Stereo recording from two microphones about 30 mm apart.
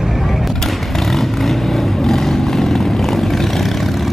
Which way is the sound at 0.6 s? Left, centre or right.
Centre.